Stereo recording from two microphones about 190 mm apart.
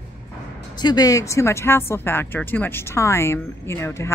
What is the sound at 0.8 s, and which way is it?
Speech, 20° left (ahead or behind).